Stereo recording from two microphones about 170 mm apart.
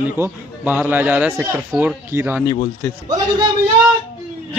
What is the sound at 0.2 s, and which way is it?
A man's voice, 10° right (ahead or behind).